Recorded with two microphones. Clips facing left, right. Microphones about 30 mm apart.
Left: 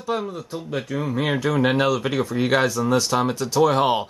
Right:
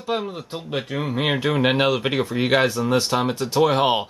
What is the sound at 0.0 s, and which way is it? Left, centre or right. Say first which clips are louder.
Speech: even; right.